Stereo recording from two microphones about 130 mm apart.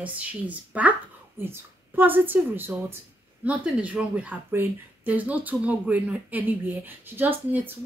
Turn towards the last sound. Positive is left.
turn(degrees=-15)  # may be behind; listen again after turning